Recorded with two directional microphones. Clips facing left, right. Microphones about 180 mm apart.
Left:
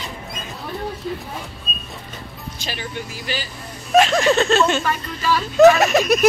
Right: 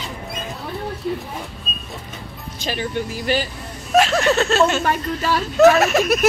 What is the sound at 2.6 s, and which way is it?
Speech, 45° right (ahead or behind).